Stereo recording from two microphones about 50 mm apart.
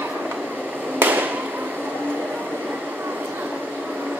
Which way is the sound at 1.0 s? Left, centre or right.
Right.